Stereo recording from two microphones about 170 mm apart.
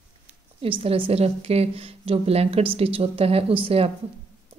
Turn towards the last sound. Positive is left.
turn(degrees=-35)  # may be behind; listen again after turning